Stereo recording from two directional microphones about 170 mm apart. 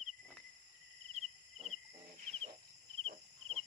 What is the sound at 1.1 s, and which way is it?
Cricket, 35° right (ahead or behind).